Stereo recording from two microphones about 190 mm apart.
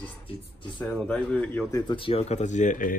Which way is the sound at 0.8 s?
5° left (ahead or behind).